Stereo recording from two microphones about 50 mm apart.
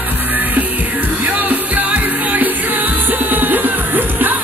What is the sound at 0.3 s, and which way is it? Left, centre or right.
Music, right.